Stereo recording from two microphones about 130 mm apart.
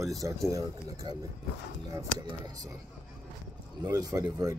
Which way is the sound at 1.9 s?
30° right (ahead or behind).